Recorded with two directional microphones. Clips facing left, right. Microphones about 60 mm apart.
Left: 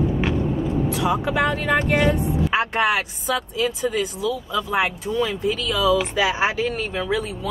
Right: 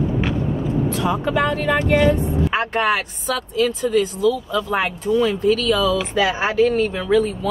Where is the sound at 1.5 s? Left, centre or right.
Left.